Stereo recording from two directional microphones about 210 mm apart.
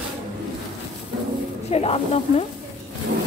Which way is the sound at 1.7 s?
30° left (ahead or behind).